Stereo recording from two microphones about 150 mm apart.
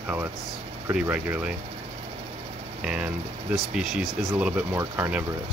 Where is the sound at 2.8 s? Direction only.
5° right (ahead or behind).